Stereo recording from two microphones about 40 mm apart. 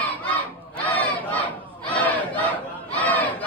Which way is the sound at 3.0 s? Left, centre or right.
Left.